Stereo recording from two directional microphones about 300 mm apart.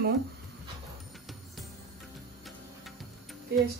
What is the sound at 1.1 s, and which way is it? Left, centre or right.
Music, centre.